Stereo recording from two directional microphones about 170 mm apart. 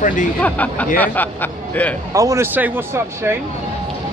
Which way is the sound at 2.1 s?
15° right (ahead or behind).